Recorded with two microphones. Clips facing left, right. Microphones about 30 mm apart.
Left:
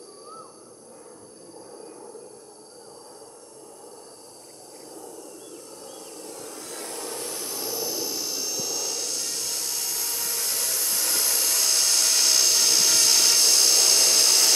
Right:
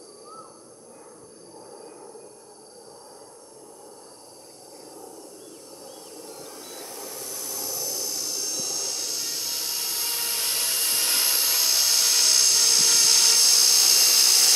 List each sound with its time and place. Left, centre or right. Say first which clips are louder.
6.1 s a sound: left 2 dB; left
7.3 s aircraft: left 2 dB; left
7.6 s jet engine: left 3 dB; centre